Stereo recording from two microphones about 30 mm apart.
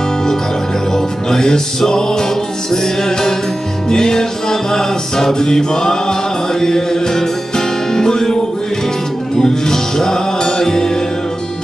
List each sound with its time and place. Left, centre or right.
0.9 s music: centre
9.4 s music: centre